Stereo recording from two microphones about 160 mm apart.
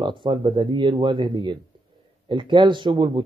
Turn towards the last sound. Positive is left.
turn(degrees=-30)  # may be behind; listen again after turning